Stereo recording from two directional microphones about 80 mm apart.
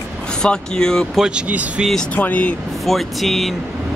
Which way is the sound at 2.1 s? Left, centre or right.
Centre.